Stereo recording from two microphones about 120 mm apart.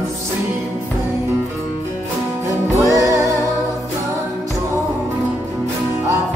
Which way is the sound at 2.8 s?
25° right (ahead or behind).